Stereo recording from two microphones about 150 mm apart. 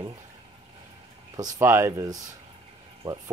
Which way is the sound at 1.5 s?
15° right (ahead or behind).